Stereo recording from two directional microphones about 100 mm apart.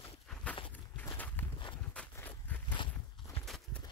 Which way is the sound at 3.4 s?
5° left (ahead or behind).